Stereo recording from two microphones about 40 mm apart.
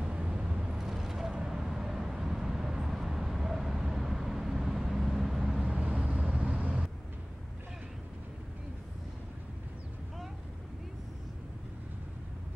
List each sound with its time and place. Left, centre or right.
0.0 s vehicle: right; by 5.7 s centre
5.9 s vehicle: right